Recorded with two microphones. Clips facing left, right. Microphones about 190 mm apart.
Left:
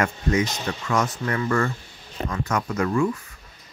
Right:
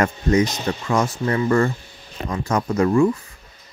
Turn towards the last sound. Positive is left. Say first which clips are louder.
# right 6 dB
turn(degrees=-30)  # may be behind; listen again after turning